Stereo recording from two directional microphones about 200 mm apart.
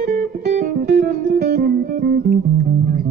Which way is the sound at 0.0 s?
40° right (ahead or behind).